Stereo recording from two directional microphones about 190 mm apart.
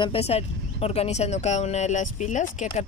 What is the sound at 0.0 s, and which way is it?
Speech, 30° left (ahead or behind).